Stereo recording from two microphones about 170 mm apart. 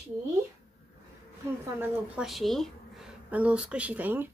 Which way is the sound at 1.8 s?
5° right (ahead or behind).